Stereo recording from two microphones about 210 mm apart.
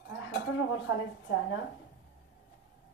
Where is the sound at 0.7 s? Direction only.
65° left (ahead or behind).